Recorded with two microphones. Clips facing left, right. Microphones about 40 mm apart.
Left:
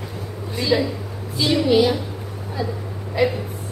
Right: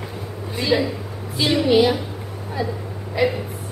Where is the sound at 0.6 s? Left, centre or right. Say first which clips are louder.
Even; centre.